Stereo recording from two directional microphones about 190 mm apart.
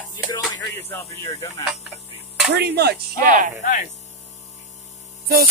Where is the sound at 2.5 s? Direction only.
60° right (ahead or behind).